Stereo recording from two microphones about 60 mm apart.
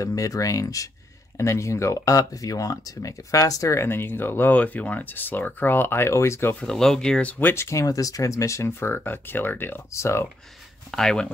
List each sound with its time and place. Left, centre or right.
0.0 s speech: left
1.4 s speech: left
3.7 s speech: left
4.6 s speech: left
6.6 s speech: centre
7.2 s speech: left
7.7 s speech: left
8.6 s speech: left
9.9 s speech: left
10.9 s speech: centre